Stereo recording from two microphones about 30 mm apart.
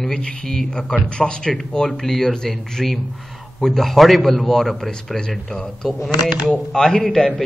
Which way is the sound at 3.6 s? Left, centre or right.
Centre.